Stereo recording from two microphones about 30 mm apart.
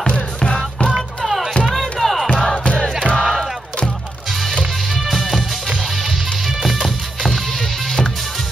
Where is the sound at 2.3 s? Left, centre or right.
Centre.